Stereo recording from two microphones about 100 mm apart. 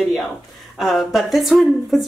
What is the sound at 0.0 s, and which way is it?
Speech, centre (ahead or behind).